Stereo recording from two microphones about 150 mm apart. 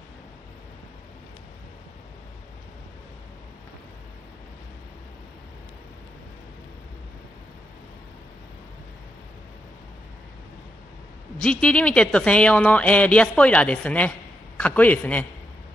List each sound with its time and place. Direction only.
11.6 s a woman's voice: 10° left (ahead or behind)